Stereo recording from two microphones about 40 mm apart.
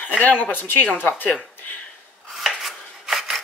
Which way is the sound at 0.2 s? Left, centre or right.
Left.